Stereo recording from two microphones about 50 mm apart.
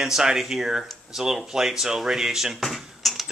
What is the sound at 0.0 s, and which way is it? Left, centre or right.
Speech, centre.